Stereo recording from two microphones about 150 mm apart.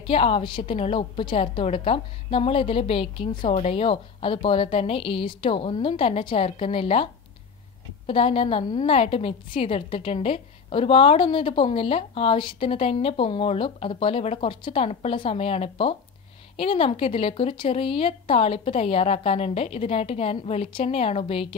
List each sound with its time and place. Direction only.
0.0 s a woman's voice: 40° left (ahead or behind)
8.1 s a woman's voice: 40° left (ahead or behind)